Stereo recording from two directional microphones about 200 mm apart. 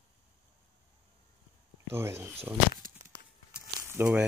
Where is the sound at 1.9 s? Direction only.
10° right (ahead or behind).